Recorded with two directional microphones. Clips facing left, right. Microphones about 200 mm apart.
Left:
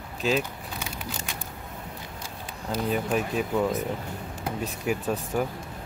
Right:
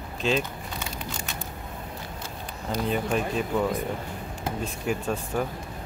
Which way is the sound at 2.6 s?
5° left (ahead or behind).